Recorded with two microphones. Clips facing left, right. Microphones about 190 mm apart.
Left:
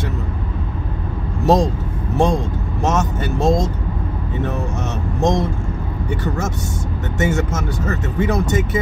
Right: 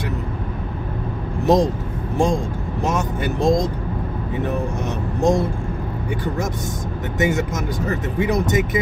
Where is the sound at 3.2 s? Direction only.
15° right (ahead or behind).